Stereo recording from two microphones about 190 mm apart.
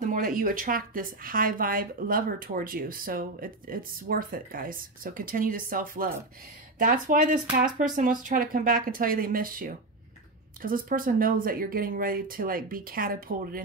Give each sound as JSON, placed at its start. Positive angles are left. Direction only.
{"t": 0.0, "sound": "speech", "side_deg": -45}